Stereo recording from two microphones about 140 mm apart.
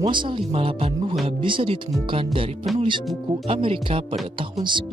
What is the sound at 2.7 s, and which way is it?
Speech, centre (ahead or behind).